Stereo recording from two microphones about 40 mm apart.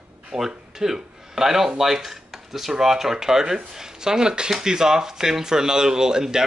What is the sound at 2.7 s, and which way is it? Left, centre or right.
Speech, centre.